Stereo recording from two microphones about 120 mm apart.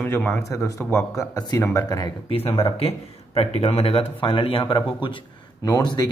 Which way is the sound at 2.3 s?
55° left (ahead or behind).